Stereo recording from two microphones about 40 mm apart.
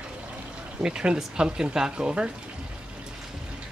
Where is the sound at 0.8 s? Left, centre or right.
Right.